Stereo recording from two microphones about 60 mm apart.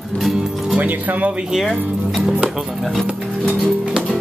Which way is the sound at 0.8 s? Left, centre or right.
Right.